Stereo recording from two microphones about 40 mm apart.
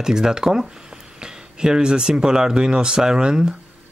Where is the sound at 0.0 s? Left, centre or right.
Centre.